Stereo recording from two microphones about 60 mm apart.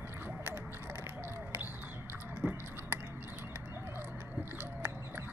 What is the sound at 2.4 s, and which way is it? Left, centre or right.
Biting, right.